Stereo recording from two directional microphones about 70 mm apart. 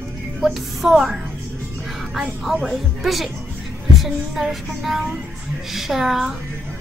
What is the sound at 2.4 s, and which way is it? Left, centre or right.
Child singing, centre.